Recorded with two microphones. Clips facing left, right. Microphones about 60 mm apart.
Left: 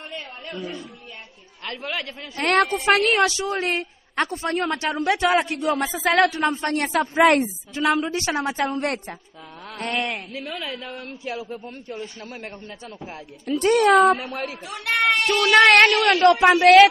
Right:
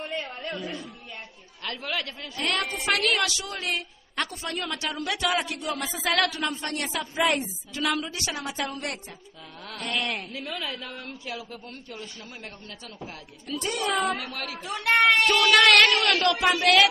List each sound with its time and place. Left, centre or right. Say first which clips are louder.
1.6 s speech: left 2 dB; left
2.3 s a woman's voice: left 9 dB; left
2.7 s a woman's voice: left 6 dB; left
7.2 s speech: left 8 dB; left
7.7 s a woman's voice: left 6 dB; left
13.6 s speech: left 12 dB; left
14.0 s a man's voice: left 9 dB; left